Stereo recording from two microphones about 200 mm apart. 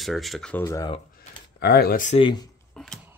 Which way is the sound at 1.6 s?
50° left (ahead or behind).